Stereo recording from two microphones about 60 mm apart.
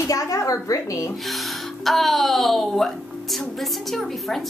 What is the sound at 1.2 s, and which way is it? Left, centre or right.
Speech, centre.